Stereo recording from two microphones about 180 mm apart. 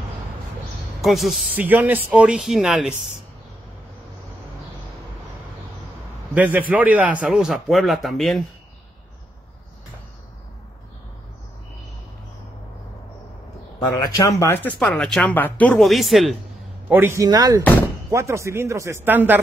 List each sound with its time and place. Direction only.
1.0 s speech: centre (ahead or behind)
6.3 s a man's voice: 10° right (ahead or behind)
13.7 s speech: 20° left (ahead or behind); by 16.3 s centre (ahead or behind)
16.9 s speech: 15° right (ahead or behind)